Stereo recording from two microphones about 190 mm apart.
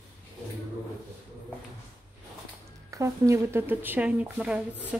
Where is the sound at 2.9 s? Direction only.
15° right (ahead or behind).